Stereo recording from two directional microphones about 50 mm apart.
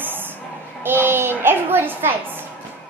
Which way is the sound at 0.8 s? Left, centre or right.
Right.